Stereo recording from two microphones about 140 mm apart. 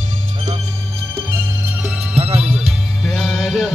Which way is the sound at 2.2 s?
45° right (ahead or behind).